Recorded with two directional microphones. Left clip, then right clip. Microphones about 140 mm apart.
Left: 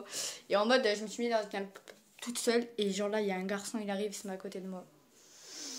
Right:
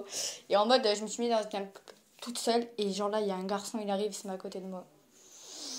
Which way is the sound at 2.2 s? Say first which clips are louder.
Right 1 dB; centre (ahead or behind).